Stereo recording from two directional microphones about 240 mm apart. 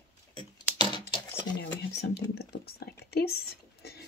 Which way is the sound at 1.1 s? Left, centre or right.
Centre.